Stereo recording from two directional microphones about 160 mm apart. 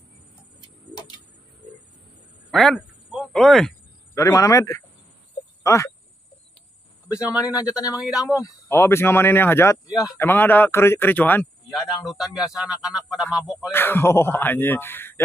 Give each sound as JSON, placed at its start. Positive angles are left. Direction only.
{"t": 0.6, "sound": "music", "side_deg": 25}
{"t": 2.5, "sound": "speech", "side_deg": 0}
{"t": 4.1, "sound": "a man's voice", "side_deg": 20}
{"t": 7.1, "sound": "a man's voice", "side_deg": -10}
{"t": 7.4, "sound": "a man's voice", "side_deg": 20}
{"t": 8.0, "sound": "a man's voice", "side_deg": -5}
{"t": 8.4, "sound": "speech", "side_deg": 20}
{"t": 12.0, "sound": "a man's voice", "side_deg": 0}
{"t": 13.7, "sound": "speech", "side_deg": 15}